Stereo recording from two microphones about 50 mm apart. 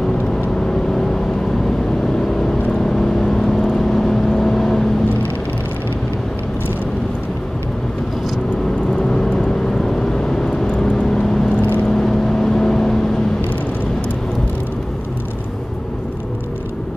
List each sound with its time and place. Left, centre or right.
0.6 s vehicle: centre
9.0 s vehicle: centre
11.4 s vehicle: left
11.8 s vehicle: centre